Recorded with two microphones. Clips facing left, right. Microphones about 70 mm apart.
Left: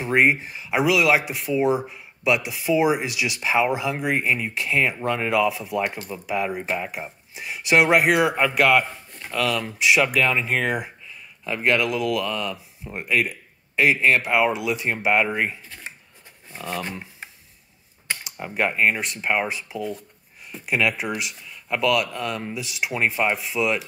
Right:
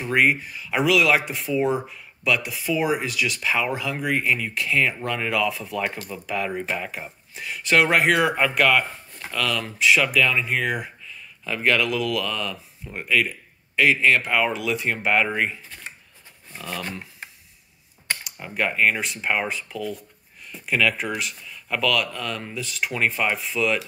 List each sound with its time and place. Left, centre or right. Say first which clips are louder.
0.0 s speech: left 1 dB; left
0.7 s speech: even; centre; by 5.5 s left
5.5 s speech: left 2 dB; centre
10.1 s speech: even; left
11.4 s speech: even; centre
14.2 s speech: left 2 dB; centre
18.2 s a sound: left 3 dB; left
18.7 s speech: right 1 dB; left
18.9 s speech: left 1 dB; centre
23.3 s speech: even; centre